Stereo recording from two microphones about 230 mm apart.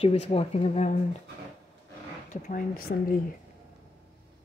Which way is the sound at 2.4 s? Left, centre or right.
Left.